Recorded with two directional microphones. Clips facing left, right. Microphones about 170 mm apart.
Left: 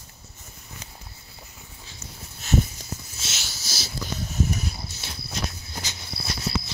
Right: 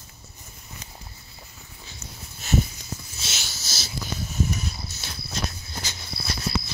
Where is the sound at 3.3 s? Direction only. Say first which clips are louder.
Even; 10° left (ahead or behind).